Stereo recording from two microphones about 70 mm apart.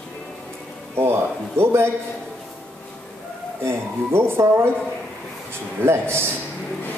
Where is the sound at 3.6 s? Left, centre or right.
Right.